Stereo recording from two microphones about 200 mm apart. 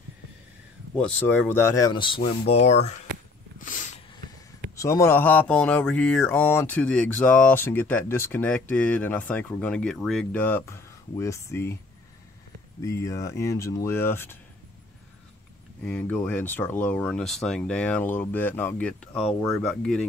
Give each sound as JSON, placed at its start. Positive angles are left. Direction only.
{"t": 0.9, "sound": "speech", "side_deg": 5}
{"t": 3.5, "sound": "a sound", "side_deg": 40}
{"t": 4.7, "sound": "speech", "side_deg": 15}
{"t": 12.8, "sound": "speech", "side_deg": 15}
{"t": 15.8, "sound": "speech", "side_deg": 5}